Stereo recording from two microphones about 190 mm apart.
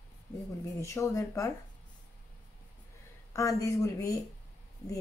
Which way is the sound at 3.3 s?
15° left (ahead or behind).